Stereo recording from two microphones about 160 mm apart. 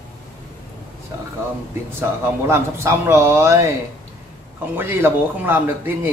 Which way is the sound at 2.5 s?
15° right (ahead or behind).